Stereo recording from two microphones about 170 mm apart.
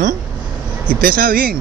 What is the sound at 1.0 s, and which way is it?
Speech, 60° right (ahead or behind).